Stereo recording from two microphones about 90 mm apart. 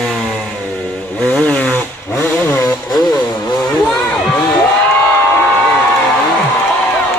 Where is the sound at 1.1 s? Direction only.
15° left (ahead or behind).